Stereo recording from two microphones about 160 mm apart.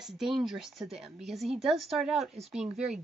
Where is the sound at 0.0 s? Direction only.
5° right (ahead or behind).